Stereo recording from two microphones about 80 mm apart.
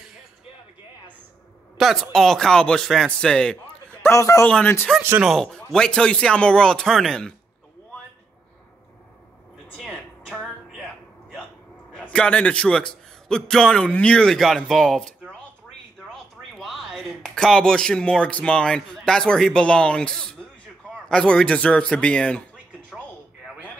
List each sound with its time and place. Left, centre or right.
1.8 s a man's voice: centre
4.1 s a man's voice: left
4.9 s a man's voice: centre
10.3 s music: centre
12.0 s a man's voice: centre